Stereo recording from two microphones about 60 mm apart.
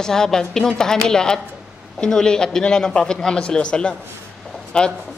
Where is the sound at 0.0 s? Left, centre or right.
Centre.